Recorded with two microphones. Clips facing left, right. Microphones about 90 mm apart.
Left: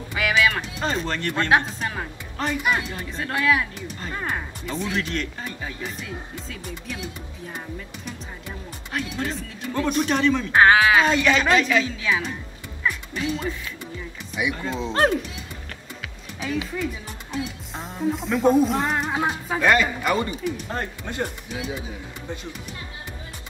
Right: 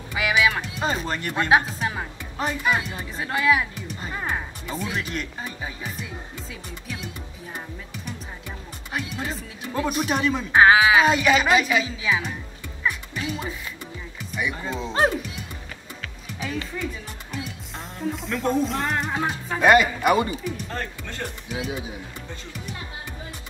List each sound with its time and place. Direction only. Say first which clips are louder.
0.1 s music: even; 5° right (ahead or behind)
2.7 s speech: even; 5° right (ahead or behind)
8.9 s speech: left 2 dB; 5° right (ahead or behind)
12.8 s music: left 2 dB; 5° right (ahead or behind)
14.5 s speech: left 2 dB; 5° right (ahead or behind)
16.3 s speech: left 3 dB; centre (ahead or behind)
17.7 s speech: left 4 dB; centre (ahead or behind)
19.6 s speech: right 3 dB; 15° right (ahead or behind)
20.7 s speech: left 3 dB; 20° left (ahead or behind)